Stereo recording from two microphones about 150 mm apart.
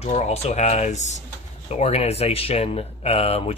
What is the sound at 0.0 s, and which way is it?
Speech, 45° left (ahead or behind).